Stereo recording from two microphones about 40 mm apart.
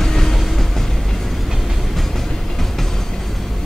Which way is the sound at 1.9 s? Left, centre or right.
Centre.